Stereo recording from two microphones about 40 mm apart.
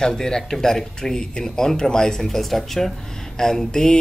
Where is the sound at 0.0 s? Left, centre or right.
Centre.